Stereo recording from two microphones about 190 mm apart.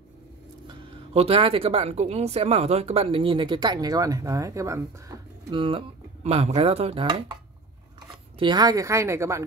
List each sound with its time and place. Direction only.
0.7 s speech: 30° right (ahead or behind)
8.4 s a woman's voice: 20° right (ahead or behind)